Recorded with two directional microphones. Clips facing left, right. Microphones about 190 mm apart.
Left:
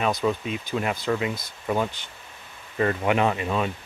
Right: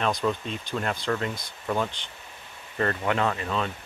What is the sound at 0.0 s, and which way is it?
Speech, 5° left (ahead or behind).